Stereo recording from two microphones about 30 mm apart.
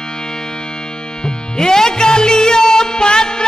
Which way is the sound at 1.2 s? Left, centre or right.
Left.